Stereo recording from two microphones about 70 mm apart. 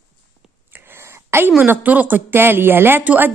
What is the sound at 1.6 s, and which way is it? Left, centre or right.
A woman's voice, right.